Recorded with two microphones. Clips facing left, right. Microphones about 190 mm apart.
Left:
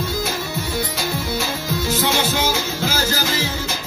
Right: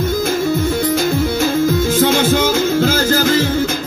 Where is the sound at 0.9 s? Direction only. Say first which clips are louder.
Right 8 dB; 50° right (ahead or behind).